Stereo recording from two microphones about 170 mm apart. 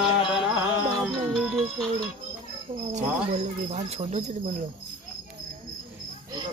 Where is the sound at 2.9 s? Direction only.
45° right (ahead or behind).